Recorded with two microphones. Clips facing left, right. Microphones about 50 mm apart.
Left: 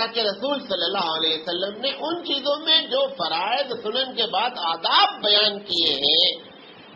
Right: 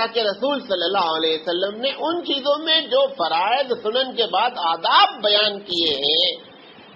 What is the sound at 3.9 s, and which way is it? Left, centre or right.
Speech, centre.